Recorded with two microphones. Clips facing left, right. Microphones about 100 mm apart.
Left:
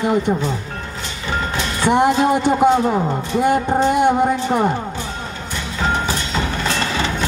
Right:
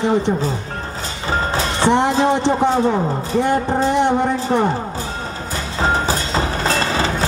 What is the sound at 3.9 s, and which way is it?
Music, 10° left (ahead or behind).